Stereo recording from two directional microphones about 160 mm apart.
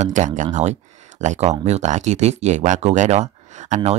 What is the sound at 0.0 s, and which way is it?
Speech, 50° right (ahead or behind).